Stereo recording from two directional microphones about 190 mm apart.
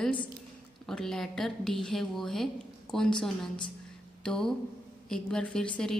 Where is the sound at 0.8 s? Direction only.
Centre (ahead or behind).